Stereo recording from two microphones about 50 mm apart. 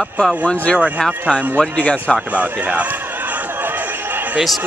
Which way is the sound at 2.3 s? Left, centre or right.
Right.